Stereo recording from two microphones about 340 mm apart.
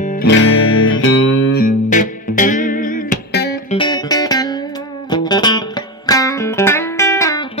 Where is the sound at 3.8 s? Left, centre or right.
Centre.